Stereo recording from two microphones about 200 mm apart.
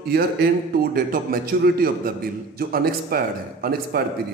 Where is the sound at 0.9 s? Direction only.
45° right (ahead or behind).